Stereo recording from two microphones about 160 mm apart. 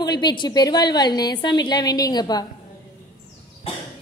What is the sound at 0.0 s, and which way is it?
A woman's voice, 25° left (ahead or behind).